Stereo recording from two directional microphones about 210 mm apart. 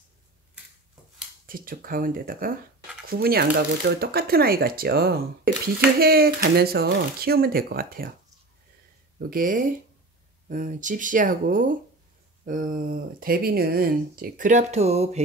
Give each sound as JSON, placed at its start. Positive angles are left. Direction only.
{"t": 1.4, "sound": "speech", "side_deg": -45}
{"t": 9.3, "sound": "speech", "side_deg": -40}